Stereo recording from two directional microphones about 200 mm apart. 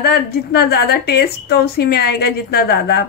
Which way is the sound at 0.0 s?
55° left (ahead or behind).